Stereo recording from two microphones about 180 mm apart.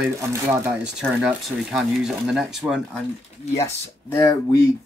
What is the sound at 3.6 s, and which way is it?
Speech, 15° left (ahead or behind).